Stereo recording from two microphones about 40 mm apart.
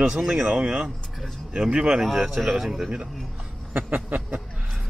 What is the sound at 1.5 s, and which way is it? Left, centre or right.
Speech, right.